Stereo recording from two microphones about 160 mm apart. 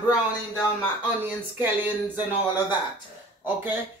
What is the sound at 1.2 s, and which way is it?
Speech, 10° right (ahead or behind).